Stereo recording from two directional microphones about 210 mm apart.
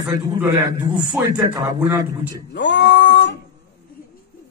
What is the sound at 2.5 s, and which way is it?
Speech, 55° left (ahead or behind).